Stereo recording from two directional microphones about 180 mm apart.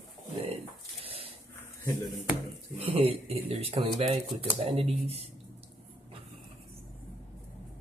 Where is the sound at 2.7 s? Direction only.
35° right (ahead or behind).